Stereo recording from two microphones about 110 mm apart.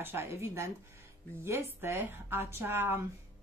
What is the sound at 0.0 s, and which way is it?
A woman's voice, 20° right (ahead or behind).